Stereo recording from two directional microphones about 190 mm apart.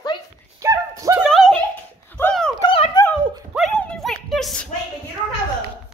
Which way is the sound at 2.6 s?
30° left (ahead or behind).